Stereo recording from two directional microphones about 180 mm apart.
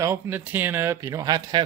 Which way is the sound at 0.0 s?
15° right (ahead or behind).